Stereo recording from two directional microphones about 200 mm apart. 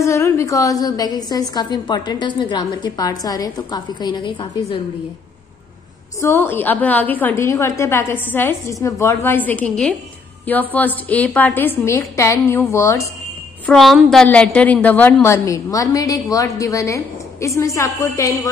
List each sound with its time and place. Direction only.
0.0 s a woman's voice: 15° left (ahead or behind)
6.2 s a woman's voice: 10° left (ahead or behind)
13.7 s a woman's voice: centre (ahead or behind); by 18.5 s 15° left (ahead or behind)